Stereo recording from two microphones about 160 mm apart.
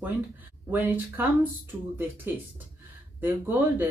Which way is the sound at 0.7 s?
10° right (ahead or behind).